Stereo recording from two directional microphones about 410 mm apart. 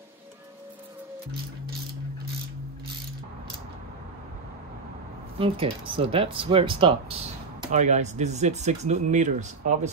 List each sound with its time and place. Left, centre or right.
5.4 s speech: centre